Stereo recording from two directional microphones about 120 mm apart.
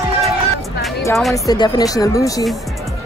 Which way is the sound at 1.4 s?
35° left (ahead or behind).